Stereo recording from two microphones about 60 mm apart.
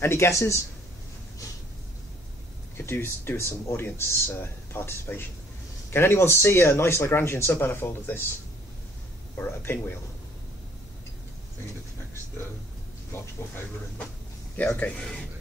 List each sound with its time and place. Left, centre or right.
0.0 s speech: left
0.3 s speech: left
2.8 s speech: left
7.6 s speech: left
9.4 s speech: left
14.6 s a man's voice: left